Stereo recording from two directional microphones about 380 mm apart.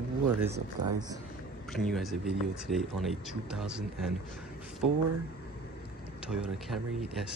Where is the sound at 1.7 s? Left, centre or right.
Centre.